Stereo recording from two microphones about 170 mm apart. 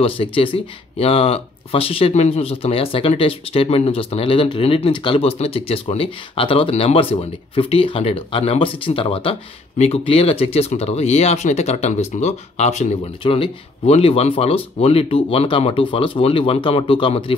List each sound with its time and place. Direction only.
0.0 s speech: 30° left (ahead or behind)